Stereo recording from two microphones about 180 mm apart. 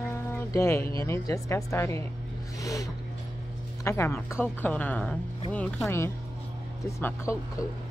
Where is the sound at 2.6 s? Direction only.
20° left (ahead or behind).